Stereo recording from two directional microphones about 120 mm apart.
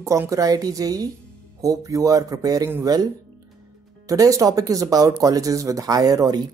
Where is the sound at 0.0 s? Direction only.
25° right (ahead or behind).